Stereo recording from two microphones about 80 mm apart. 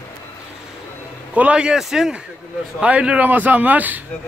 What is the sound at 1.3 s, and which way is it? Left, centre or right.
A man's voice, centre.